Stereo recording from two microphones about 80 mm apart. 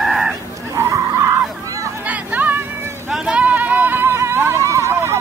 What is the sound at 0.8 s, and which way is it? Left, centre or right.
Skidding, right.